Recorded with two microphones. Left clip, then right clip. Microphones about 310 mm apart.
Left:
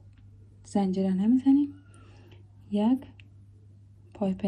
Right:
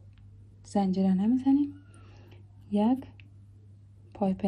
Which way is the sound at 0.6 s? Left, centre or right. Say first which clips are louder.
Even; centre.